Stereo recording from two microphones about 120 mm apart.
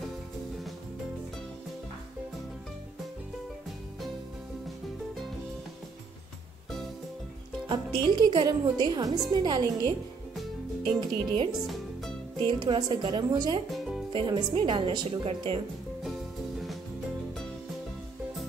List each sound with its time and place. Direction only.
7.6 s speech: 40° right (ahead or behind)
11.0 s speech: 40° right (ahead or behind)
11.6 s music: centre (ahead or behind)
12.4 s speech: 40° right (ahead or behind)
13.7 s music: centre (ahead or behind)
14.1 s speech: 40° right (ahead or behind)
16.0 s music: centre (ahead or behind)